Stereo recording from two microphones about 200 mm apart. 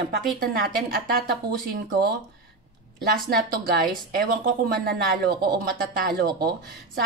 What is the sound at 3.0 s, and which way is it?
Speech, 50° right (ahead or behind).